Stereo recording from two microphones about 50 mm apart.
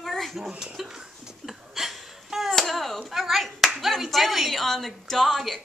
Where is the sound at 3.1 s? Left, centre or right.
Centre.